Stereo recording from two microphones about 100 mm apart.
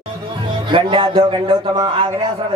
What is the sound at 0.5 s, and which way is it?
A man's voice, 55° right (ahead or behind).